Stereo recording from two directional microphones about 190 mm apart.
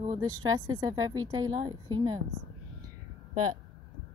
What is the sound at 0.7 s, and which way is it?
A woman's voice, 20° right (ahead or behind).